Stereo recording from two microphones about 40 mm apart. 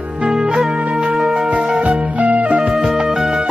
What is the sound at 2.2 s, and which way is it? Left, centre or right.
Music, right.